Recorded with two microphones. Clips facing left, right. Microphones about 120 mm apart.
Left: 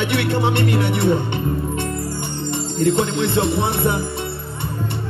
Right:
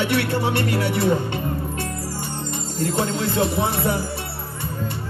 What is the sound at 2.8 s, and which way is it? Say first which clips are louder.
Speech: left 5 dB; 25° left (ahead or behind).